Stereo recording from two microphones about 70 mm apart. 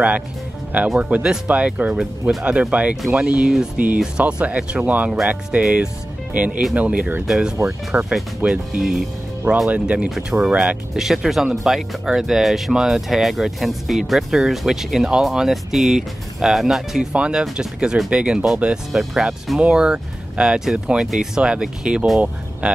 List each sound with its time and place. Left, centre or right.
0.9 s speech: centre